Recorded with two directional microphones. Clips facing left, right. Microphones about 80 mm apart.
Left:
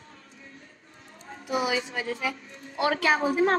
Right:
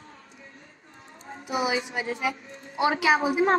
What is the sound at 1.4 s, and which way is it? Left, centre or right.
A woman's voice, right.